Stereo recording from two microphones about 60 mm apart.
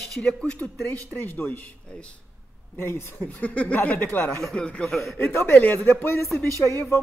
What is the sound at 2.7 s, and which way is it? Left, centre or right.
Speech, left.